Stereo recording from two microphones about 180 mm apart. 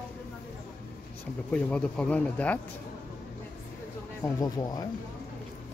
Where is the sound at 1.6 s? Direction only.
5° left (ahead or behind).